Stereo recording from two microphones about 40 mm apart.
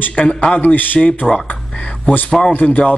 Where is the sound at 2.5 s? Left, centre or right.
Left.